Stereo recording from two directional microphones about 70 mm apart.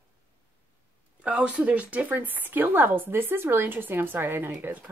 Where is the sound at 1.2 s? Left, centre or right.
Centre.